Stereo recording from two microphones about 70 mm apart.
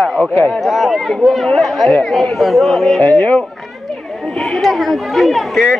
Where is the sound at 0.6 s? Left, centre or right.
Centre.